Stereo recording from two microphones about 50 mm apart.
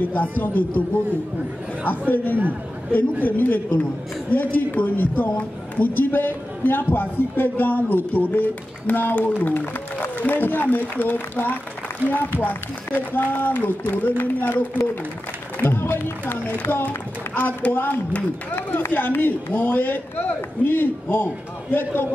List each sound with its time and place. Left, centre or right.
0.0 s speech: left
1.9 s speech: left
5.3 s speech: left
5.9 s speech: left
17.3 s speech: left
17.7 s speech: left
18.1 s speech: left